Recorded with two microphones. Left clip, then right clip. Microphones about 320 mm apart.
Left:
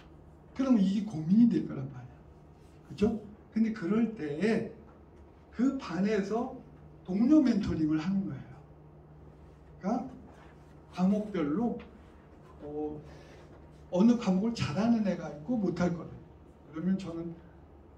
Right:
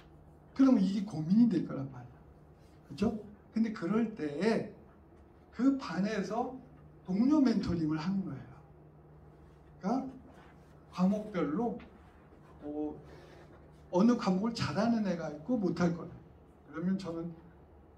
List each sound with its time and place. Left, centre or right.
0.6 s a man's voice: centre
3.5 s a man's voice: centre
5.6 s a man's voice: centre
9.8 s a man's voice: centre
13.9 s a man's voice: centre